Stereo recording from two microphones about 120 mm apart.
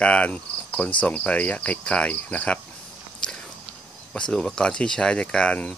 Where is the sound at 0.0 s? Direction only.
10° left (ahead or behind).